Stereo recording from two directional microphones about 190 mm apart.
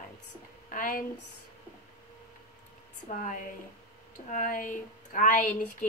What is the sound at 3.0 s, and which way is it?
Speech, 45° left (ahead or behind).